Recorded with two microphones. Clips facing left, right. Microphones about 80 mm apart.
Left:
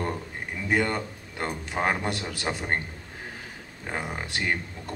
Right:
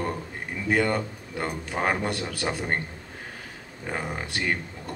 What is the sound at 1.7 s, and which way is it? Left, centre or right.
Speech, centre.